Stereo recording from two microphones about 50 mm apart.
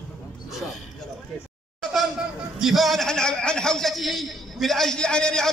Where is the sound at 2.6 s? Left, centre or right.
Centre.